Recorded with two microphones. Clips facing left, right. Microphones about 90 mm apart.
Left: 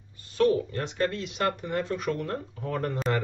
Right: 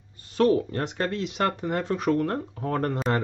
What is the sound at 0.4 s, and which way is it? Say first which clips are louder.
Speech: right 2 dB; 40° right (ahead or behind).